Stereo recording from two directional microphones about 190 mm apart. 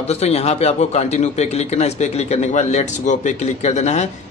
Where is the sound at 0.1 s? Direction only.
35° left (ahead or behind).